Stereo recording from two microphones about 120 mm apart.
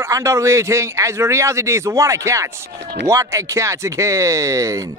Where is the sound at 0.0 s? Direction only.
25° right (ahead or behind).